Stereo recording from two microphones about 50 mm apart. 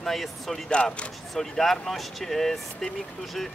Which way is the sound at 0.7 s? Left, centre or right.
Left.